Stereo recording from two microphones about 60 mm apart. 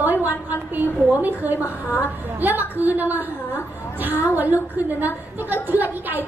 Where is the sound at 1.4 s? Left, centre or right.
Right.